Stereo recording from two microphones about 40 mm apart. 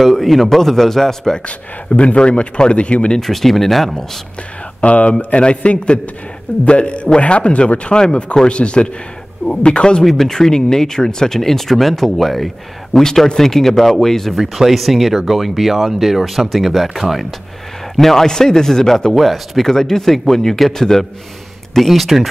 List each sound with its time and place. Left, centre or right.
0.0 s speech: centre
1.4 s speech: left
3.2 s speech: centre
4.8 s speech: left
10.0 s speech: centre
14.4 s speech: centre
19.1 s speech: centre
19.7 s speech: centre